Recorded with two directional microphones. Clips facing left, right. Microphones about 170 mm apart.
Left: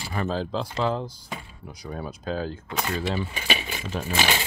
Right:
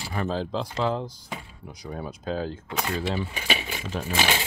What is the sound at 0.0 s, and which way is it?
Speech, 15° right (ahead or behind).